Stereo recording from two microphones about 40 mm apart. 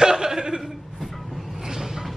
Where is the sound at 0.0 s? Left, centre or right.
Centre.